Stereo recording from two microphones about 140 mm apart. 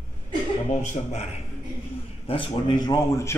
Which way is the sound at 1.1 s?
50° left (ahead or behind).